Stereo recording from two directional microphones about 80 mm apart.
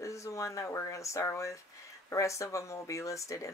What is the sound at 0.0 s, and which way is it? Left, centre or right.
Speech, left.